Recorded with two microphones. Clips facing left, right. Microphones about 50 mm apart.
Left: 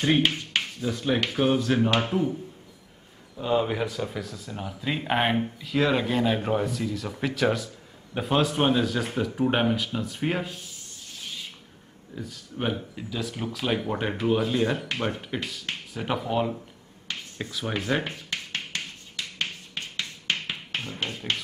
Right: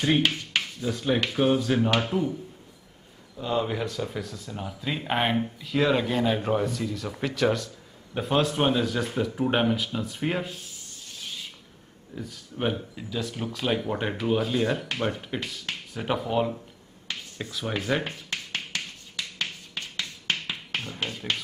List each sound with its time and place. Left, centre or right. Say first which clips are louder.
0.7 s speech: even; centre
2.0 s a man's voice: left 1 dB; centre
3.3 s speech: left 2 dB; centre
12.2 s speech: right 1 dB; centre
18.0 s finger snapping: even; left